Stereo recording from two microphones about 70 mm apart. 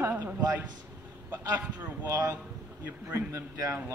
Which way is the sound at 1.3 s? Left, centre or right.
Right.